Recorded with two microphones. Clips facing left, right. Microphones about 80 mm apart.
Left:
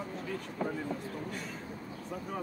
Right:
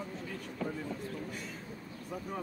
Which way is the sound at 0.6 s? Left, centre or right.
Left.